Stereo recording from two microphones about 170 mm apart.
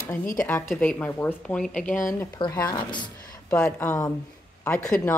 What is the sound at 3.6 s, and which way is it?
A woman's voice, 15° left (ahead or behind).